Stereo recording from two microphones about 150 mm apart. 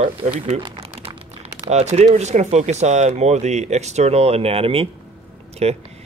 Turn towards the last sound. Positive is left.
turn(degrees=-45)  # may be behind; listen again after turning